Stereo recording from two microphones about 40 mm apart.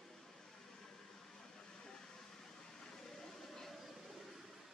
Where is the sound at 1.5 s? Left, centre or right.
Centre.